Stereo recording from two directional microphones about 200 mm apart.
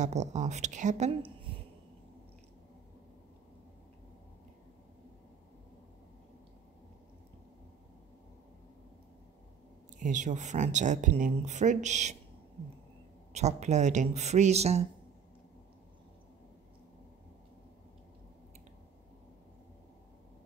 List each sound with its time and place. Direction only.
0.0 s speech: 35° right (ahead or behind)
9.9 s speech: 40° right (ahead or behind)
13.3 s speech: 35° right (ahead or behind)